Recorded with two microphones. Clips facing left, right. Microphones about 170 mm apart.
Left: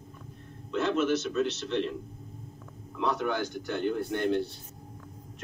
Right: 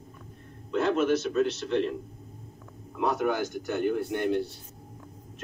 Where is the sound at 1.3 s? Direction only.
40° right (ahead or behind).